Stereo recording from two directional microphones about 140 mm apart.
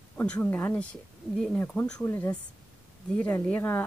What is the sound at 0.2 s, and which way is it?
Speech, 15° left (ahead or behind).